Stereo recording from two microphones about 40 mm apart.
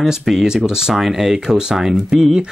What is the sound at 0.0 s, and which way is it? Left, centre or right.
Speech, centre.